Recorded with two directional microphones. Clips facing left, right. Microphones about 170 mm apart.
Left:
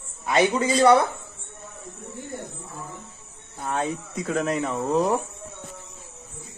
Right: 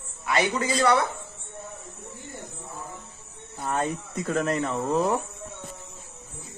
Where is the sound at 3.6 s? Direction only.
Centre (ahead or behind).